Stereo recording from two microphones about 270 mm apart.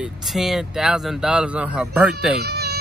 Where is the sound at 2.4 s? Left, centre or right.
Right.